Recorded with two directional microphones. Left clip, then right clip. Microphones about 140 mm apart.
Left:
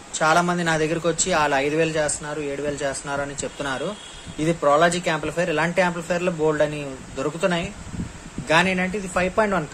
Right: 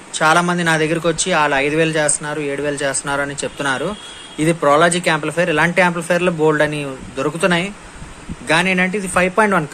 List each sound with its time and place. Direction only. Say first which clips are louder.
0.1 s a man's voice: right 5 dB; 10° left (ahead or behind)